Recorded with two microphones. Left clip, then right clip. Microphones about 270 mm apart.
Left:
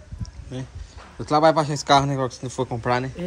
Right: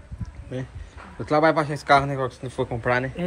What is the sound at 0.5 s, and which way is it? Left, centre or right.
Speech, centre.